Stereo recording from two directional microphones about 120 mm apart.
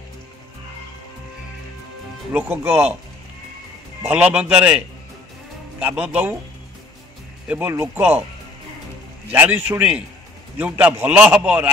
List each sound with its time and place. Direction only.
2.3 s a man's voice: 15° right (ahead or behind)
4.0 s a man's voice: 10° right (ahead or behind)
7.4 s a man's voice: 15° right (ahead or behind)
9.3 s a man's voice: 15° right (ahead or behind)